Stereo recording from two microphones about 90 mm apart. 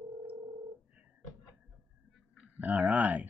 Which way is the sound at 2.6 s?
15° right (ahead or behind).